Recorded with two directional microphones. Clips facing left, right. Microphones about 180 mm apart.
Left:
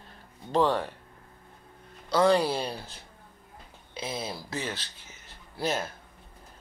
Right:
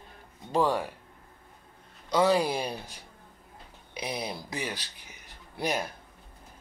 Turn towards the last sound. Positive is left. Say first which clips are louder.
# even
turn(degrees=-15)  # may be behind; listen again after turning